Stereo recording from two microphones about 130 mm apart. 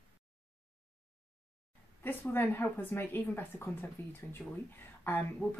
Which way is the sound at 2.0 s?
15° left (ahead or behind).